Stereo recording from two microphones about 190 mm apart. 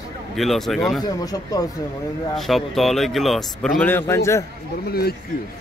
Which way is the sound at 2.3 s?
Centre (ahead or behind).